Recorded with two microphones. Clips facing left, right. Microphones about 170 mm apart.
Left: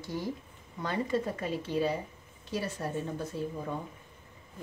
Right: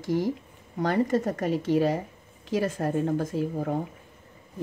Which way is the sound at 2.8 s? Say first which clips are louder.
Right 9 dB; 50° right (ahead or behind).